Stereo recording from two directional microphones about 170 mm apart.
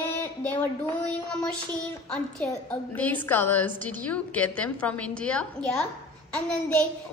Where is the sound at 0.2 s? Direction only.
10° left (ahead or behind).